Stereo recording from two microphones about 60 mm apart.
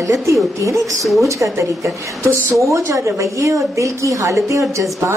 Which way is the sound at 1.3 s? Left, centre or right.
Right.